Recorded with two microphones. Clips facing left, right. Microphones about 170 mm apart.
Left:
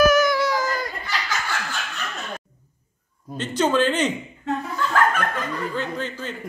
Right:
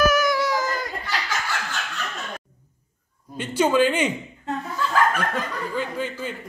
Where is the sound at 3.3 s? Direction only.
10° right (ahead or behind).